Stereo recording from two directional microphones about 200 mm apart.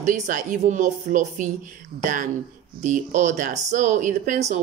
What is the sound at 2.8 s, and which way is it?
Speech, 40° right (ahead or behind).